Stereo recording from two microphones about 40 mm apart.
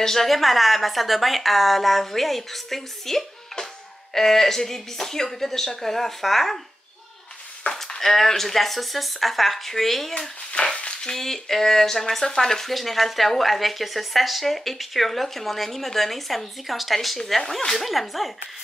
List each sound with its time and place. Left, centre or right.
0.0 s a woman's voice: centre
7.9 s a woman's voice: centre
10.1 s a woman's voice: centre
17.7 s a woman's voice: centre